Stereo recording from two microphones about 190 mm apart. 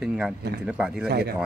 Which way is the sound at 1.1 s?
55° right (ahead or behind).